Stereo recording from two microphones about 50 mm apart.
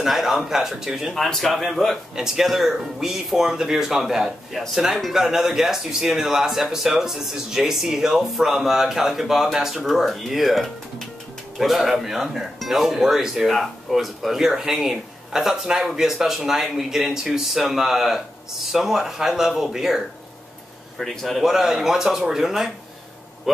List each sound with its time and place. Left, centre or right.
0.0 s speech: centre
1.1 s speech: centre
21.0 s speech: centre
21.5 s speech: centre